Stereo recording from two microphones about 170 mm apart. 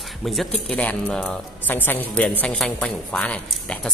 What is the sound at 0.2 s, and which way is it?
A man's voice, centre (ahead or behind).